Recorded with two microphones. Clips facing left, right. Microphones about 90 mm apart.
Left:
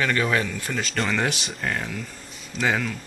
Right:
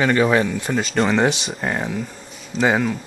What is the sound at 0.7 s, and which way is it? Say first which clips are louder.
Speech: right 7 dB; centre (ahead or behind).